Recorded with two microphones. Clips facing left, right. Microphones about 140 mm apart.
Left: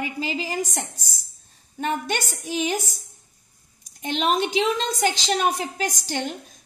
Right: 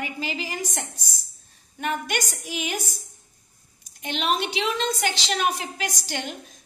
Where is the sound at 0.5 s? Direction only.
40° left (ahead or behind).